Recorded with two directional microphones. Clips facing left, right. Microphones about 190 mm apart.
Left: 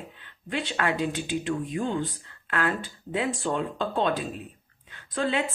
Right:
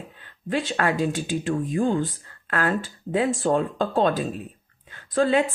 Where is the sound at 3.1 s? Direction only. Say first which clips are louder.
Right 6 dB; 45° right (ahead or behind).